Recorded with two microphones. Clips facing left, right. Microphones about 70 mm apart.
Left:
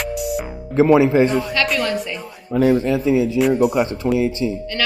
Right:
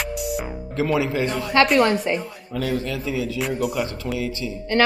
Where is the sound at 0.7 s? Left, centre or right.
Left.